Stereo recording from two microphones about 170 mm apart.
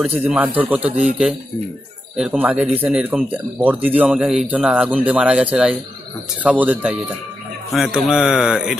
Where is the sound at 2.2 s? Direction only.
10° right (ahead or behind).